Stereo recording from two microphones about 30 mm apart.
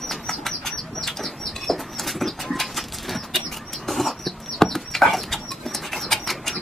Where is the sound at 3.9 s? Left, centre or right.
Centre.